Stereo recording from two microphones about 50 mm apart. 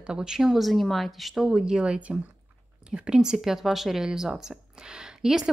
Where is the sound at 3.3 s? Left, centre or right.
Centre.